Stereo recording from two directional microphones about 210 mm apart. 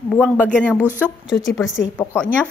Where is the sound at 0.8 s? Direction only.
10° right (ahead or behind).